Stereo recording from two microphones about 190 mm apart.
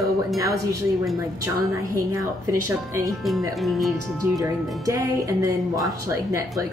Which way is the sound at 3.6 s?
Centre (ahead or behind).